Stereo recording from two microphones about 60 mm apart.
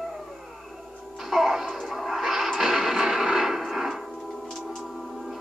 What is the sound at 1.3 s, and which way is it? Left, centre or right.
Music, centre.